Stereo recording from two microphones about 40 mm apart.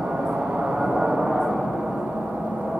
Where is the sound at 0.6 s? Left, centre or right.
Centre.